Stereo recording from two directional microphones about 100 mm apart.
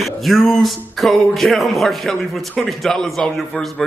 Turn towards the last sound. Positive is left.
turn(degrees=5)  # may be behind; listen again after turning